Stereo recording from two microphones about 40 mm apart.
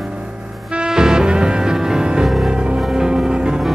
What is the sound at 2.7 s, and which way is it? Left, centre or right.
Music, centre.